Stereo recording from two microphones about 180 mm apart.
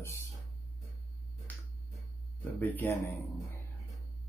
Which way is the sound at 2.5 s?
10° left (ahead or behind).